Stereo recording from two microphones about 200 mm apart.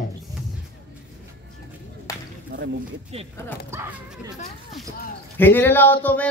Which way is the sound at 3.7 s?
15° right (ahead or behind).